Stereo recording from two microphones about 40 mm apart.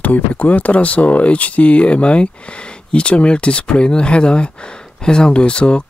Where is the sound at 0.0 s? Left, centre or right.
Left.